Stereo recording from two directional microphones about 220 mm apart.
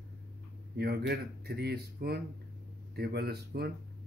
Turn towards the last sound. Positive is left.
turn(degrees=-45)  # may be behind; listen again after turning